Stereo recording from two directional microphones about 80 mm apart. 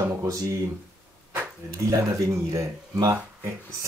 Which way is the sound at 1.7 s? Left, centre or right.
Right.